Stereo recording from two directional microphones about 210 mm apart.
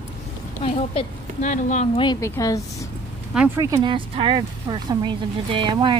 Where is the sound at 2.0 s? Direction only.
15° left (ahead or behind).